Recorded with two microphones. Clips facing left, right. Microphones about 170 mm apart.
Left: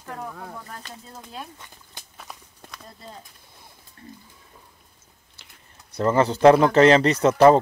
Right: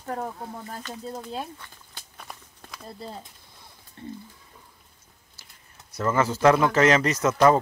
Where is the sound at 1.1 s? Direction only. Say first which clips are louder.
Right 6 dB; 30° right (ahead or behind).